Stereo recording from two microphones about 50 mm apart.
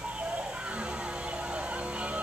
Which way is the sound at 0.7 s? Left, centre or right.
Right.